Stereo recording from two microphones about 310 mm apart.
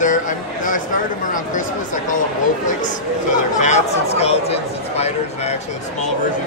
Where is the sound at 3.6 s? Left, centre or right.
Left.